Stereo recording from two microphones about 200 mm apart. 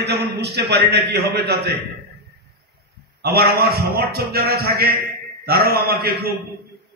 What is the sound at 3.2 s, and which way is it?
A man's voice, 50° right (ahead or behind).